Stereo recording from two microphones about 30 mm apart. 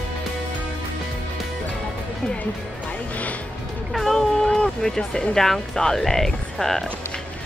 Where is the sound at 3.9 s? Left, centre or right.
Centre.